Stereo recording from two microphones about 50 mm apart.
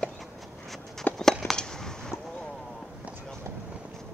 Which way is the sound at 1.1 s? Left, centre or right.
Left.